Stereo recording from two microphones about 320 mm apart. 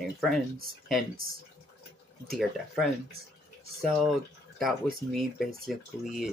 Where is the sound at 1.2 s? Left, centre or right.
Right.